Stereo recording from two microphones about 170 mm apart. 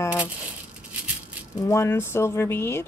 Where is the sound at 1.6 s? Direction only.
20° left (ahead or behind).